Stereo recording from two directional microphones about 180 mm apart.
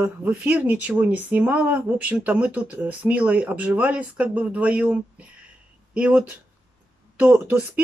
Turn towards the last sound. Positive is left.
turn(degrees=-10)  # may be behind; listen again after turning